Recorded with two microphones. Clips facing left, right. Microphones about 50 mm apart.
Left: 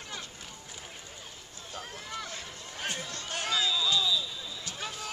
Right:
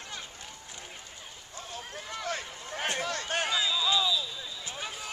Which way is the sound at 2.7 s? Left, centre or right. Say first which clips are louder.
Right 6 dB; right.